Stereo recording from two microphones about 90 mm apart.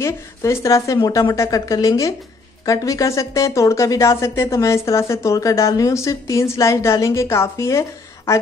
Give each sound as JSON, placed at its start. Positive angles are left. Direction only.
{"t": 0.0, "sound": "speech", "side_deg": 30}